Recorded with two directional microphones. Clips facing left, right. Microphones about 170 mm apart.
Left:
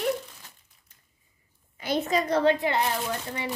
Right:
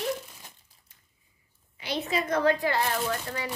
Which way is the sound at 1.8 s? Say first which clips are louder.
Left 4 dB; 45° left (ahead or behind).